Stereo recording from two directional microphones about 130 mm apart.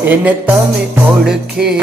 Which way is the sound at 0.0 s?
15° right (ahead or behind).